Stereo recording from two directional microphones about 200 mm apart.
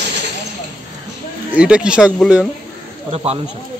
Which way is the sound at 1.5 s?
5° right (ahead or behind).